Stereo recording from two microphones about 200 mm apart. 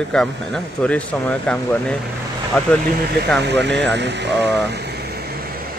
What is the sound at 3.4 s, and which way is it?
Speech, 60° right (ahead or behind).